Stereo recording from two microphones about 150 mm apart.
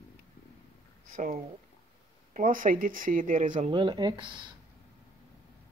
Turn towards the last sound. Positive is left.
turn(degrees=-30)  # may be behind; listen again after turning